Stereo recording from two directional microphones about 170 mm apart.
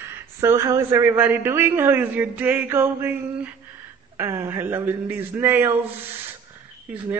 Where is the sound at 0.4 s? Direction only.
15° right (ahead or behind).